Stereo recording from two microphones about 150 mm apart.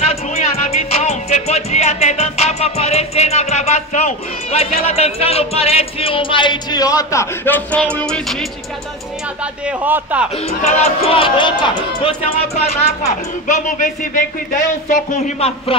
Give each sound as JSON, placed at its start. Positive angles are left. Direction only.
{"t": 0.0, "sound": "music", "side_deg": 45}
{"t": 9.4, "sound": "a man's voice", "side_deg": -10}
{"t": 10.6, "sound": "speech", "side_deg": 45}
{"t": 13.5, "sound": "speech", "side_deg": 60}